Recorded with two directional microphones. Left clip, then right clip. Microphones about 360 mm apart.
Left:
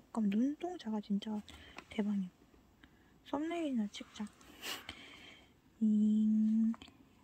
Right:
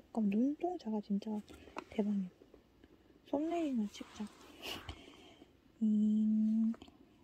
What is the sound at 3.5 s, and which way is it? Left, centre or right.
Speech, centre.